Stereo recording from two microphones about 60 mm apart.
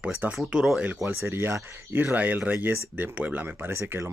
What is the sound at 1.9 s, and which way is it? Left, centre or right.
Speech, right.